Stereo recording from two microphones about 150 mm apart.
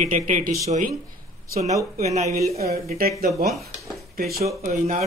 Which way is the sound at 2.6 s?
90° right.